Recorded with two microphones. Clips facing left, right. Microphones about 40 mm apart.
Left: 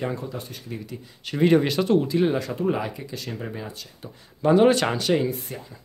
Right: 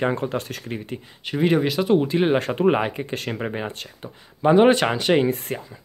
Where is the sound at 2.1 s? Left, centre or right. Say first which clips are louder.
Right 3 dB; right.